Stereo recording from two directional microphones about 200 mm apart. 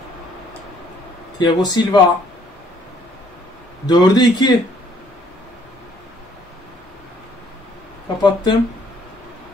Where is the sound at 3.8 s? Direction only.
20° left (ahead or behind).